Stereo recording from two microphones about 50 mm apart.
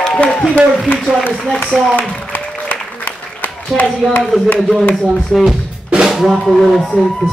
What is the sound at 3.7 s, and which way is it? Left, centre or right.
Speech, left.